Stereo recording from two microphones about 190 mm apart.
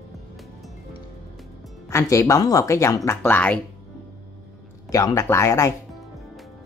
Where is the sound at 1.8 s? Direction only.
15° left (ahead or behind).